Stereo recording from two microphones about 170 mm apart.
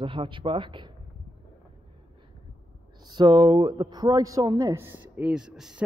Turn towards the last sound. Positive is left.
turn(degrees=-5)  # may be behind; listen again after turning